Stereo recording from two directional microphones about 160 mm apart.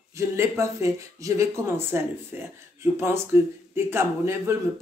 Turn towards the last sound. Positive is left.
turn(degrees=-15)  # may be behind; listen again after turning